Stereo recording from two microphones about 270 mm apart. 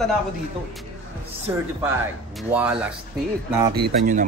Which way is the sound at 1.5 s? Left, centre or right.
Centre.